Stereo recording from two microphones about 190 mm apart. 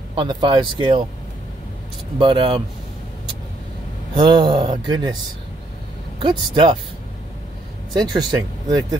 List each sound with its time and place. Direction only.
0.1 s a man's voice: 25° right (ahead or behind)
2.1 s a man's voice: 25° right (ahead or behind)
4.1 s a man's voice: 25° right (ahead or behind)
6.2 s a man's voice: 25° right (ahead or behind)
7.9 s a man's voice: 20° right (ahead or behind)